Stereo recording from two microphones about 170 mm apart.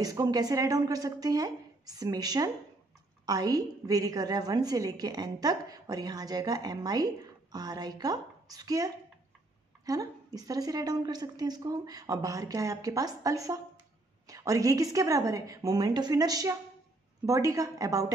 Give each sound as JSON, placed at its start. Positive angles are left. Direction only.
{"t": 0.0, "sound": "a woman's voice", "side_deg": -20}